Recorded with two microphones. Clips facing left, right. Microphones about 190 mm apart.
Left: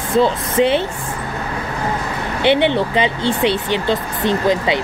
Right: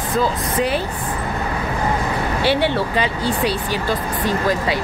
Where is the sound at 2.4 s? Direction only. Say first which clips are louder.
Left 5 dB; 20° left (ahead or behind).